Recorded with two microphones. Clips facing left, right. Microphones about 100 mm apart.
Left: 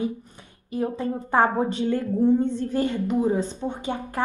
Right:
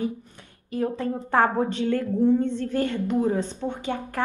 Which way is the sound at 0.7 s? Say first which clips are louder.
Even; 15° left (ahead or behind).